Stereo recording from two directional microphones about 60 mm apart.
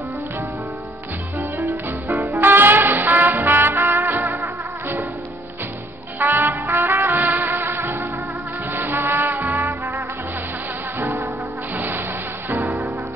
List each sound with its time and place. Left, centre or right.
1.6 s music: right
2.3 s trumpet: right
6.1 s trumpet: right
8.6 s music: right
11.7 s insect: right
12.4 s music: right